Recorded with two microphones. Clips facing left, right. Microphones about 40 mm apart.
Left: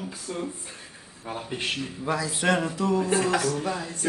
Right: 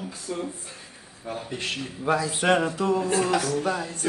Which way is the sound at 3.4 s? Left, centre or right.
Right.